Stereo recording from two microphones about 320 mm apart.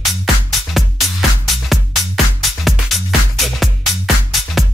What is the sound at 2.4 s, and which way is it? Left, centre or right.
Music, centre.